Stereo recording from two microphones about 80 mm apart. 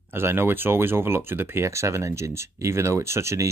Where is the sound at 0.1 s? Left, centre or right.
Right.